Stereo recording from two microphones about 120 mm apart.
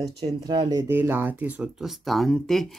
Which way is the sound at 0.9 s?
20° right (ahead or behind).